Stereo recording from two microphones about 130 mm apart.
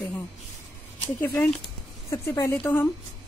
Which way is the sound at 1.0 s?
15° left (ahead or behind).